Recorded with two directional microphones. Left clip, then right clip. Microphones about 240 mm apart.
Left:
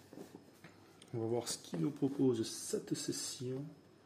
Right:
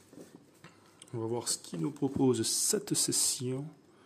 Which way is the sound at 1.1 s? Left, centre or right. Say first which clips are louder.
Right 3 dB; centre.